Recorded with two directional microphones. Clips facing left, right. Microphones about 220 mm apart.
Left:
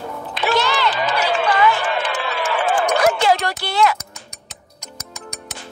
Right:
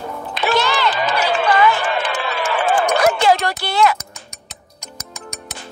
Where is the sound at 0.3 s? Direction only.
50° right (ahead or behind).